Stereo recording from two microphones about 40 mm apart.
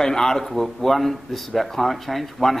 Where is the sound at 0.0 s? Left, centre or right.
Centre.